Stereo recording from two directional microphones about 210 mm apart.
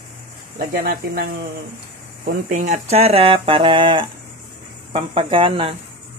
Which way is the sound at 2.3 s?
40° right (ahead or behind).